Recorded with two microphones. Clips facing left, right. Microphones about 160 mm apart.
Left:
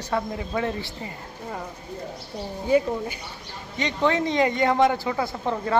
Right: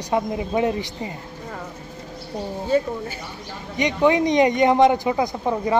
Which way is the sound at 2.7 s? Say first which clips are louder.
Left 1 dB; 15° left (ahead or behind).